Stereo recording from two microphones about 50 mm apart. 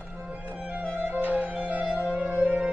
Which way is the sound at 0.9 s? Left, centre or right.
Right.